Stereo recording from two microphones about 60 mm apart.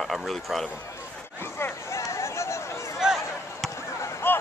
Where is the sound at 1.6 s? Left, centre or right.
Left.